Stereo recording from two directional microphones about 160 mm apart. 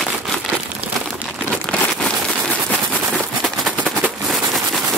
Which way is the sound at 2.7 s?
5° left (ahead or behind).